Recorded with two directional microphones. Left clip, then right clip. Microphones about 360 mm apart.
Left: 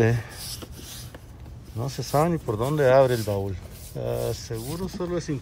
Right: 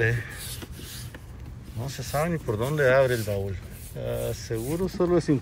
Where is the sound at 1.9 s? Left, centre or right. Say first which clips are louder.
Left 4 dB; centre.